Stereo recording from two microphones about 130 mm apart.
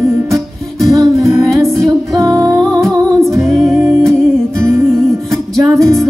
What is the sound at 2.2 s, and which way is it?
Music, 25° right (ahead or behind).